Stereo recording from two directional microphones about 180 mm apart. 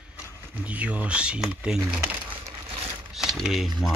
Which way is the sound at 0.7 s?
5° right (ahead or behind).